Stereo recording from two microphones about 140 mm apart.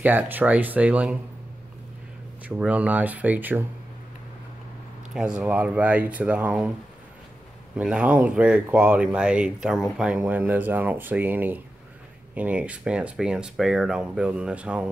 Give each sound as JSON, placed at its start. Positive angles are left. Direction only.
{"t": 0.0, "sound": "speech", "side_deg": -10}
{"t": 2.4, "sound": "speech", "side_deg": -10}
{"t": 5.1, "sound": "speech", "side_deg": -5}
{"t": 7.7, "sound": "speech", "side_deg": -5}